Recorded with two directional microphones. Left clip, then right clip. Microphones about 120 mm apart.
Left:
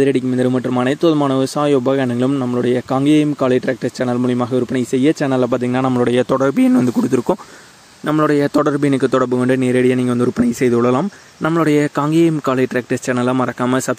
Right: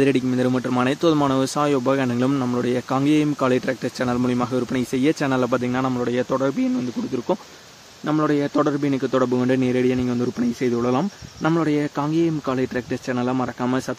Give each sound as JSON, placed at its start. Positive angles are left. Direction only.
{"t": 0.0, "sound": "speech", "side_deg": 30}
{"t": 2.3, "sound": "speech", "side_deg": 15}
{"t": 2.6, "sound": "speech", "side_deg": 30}
{"t": 5.5, "sound": "speech", "side_deg": 50}
{"t": 5.9, "sound": "speech", "side_deg": 85}
{"t": 8.2, "sound": "speech", "side_deg": 55}